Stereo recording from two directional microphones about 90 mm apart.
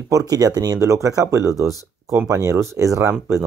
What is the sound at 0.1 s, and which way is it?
Speech, 40° right (ahead or behind).